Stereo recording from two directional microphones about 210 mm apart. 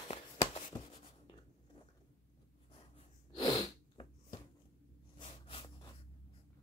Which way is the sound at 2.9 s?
25° left (ahead or behind).